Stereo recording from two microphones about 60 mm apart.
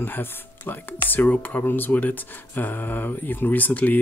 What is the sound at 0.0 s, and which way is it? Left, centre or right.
Speech, left.